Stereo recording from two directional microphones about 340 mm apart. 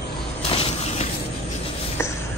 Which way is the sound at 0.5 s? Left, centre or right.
Centre.